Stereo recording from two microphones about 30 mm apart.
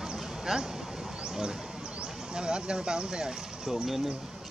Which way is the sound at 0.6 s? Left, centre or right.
Centre.